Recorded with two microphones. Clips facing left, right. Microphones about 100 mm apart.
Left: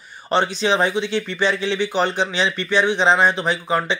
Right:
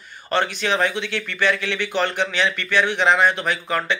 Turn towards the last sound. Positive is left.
turn(degrees=20)  # may be behind; listen again after turning